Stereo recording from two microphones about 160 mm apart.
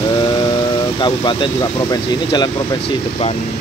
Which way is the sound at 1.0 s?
30° left (ahead or behind).